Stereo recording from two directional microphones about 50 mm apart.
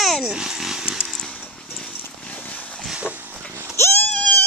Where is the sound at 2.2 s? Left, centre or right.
Left.